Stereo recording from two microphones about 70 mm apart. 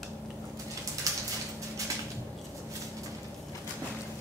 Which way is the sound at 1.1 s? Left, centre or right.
Right.